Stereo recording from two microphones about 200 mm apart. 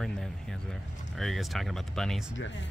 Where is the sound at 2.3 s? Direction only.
70° left (ahead or behind).